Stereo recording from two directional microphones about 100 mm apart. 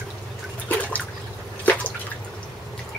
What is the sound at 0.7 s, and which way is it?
Toilet flush, 15° left (ahead or behind).